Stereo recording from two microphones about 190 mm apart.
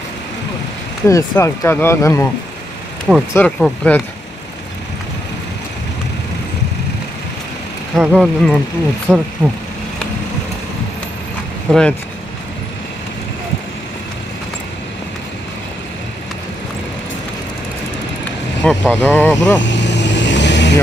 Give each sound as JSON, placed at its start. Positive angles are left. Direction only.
{"t": 1.0, "sound": "speech", "side_deg": 15}
{"t": 3.3, "sound": "speech", "side_deg": 5}
{"t": 7.9, "sound": "speech", "side_deg": 0}
{"t": 9.1, "sound": "speech", "side_deg": -10}
{"t": 11.7, "sound": "speech", "side_deg": 5}
{"t": 18.6, "sound": "speech", "side_deg": 5}
{"t": 19.6, "sound": "vehicle", "side_deg": 70}